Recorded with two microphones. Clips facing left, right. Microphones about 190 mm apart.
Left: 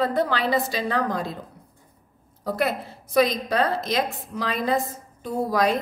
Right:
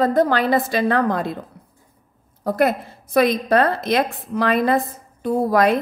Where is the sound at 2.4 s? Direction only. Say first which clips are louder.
Right 6 dB; 50° right (ahead or behind).